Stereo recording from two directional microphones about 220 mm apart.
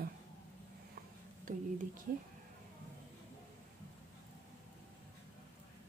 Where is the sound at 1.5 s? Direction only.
35° right (ahead or behind).